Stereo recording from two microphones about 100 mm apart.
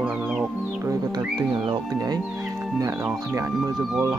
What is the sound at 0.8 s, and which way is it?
Music, 45° right (ahead or behind).